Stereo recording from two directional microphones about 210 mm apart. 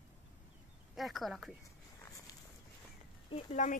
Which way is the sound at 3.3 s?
25° left (ahead or behind).